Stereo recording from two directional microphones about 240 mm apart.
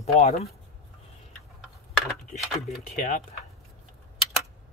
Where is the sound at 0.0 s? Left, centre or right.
Left.